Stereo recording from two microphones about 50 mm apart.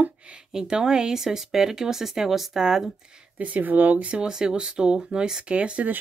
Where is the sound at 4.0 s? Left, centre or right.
Right.